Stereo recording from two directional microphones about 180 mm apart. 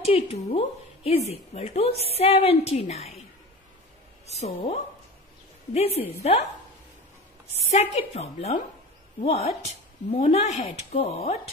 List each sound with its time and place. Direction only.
0.0 s a woman's voice: 30° left (ahead or behind)
4.3 s a woman's voice: 35° left (ahead or behind)
7.7 s a woman's voice: 40° left (ahead or behind)